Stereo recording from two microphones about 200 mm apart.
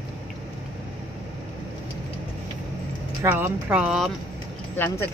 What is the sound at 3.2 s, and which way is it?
Speech, 10° right (ahead or behind).